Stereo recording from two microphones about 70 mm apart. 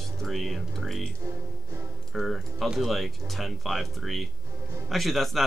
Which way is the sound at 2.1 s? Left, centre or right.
Centre.